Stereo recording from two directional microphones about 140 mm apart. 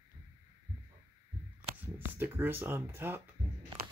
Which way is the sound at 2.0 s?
15° right (ahead or behind).